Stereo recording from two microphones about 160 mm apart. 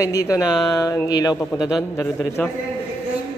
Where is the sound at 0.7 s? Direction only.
20° left (ahead or behind).